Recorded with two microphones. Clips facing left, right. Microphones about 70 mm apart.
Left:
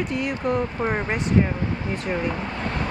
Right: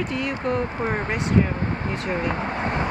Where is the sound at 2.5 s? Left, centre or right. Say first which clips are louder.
Right 3 dB; right.